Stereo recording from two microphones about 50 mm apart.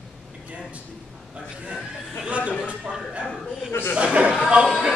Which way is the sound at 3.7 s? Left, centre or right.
Left.